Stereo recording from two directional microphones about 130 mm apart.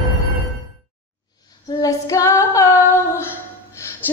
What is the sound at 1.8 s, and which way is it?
Female singing, 25° left (ahead or behind).